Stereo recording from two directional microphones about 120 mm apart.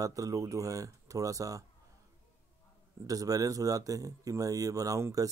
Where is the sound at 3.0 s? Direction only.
30° right (ahead or behind).